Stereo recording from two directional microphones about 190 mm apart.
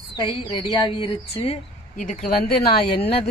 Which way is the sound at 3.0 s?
30° left (ahead or behind).